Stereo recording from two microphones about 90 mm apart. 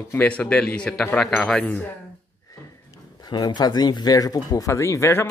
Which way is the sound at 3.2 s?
50° left (ahead or behind).